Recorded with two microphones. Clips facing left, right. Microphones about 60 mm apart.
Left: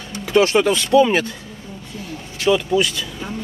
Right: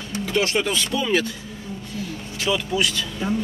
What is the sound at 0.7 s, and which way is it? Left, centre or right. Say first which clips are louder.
Speech: left 8 dB; left.